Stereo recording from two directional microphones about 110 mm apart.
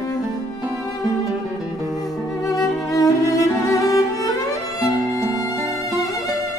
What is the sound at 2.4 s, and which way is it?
Music, 30° left (ahead or behind).